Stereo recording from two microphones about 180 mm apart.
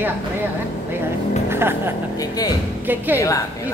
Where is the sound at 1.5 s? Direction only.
15° right (ahead or behind).